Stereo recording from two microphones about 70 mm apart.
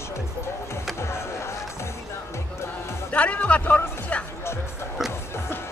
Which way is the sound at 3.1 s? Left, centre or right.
Left.